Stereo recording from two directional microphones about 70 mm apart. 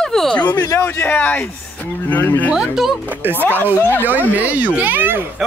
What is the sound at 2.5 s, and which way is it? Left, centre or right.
Speech, centre.